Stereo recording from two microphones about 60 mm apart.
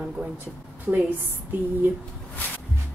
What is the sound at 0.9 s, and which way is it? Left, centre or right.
Speech, right.